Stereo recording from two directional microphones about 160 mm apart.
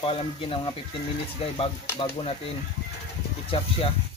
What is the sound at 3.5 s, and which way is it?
Speech, 35° left (ahead or behind).